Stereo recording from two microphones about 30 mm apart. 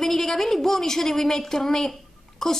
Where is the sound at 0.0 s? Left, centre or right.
Centre.